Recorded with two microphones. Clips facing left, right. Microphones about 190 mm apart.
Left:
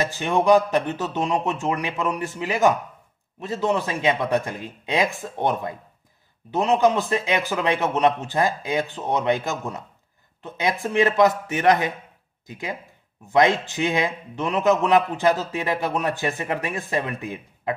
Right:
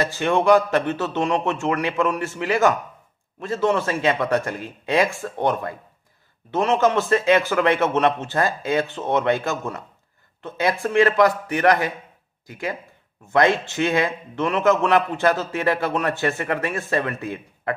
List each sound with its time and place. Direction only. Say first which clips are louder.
0.0 s a man's voice: right 2 dB; 15° left (ahead or behind)